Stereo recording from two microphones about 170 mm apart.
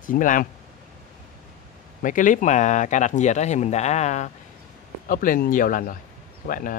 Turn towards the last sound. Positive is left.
turn(degrees=55)  # may be behind; listen again after turning